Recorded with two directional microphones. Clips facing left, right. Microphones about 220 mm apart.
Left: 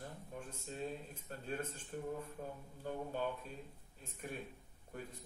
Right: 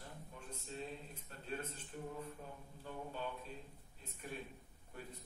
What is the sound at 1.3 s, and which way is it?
Speech, 45° left (ahead or behind).